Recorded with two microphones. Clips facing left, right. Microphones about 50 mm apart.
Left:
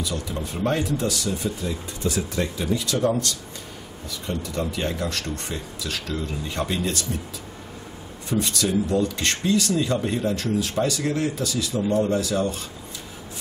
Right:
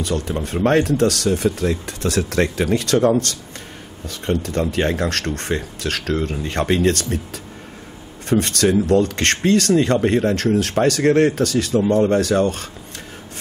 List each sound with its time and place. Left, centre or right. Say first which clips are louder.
0.0 s speech: right 6 dB; right
8.3 s speech: right 7 dB; right